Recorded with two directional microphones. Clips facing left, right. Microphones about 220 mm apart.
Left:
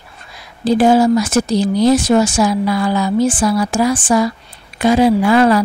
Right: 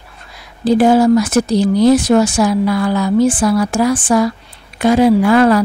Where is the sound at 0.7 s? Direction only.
55° right (ahead or behind).